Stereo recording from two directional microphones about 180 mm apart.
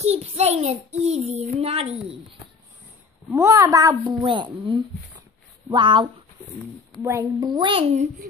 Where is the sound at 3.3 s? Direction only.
15° right (ahead or behind); by 8.0 s 35° right (ahead or behind).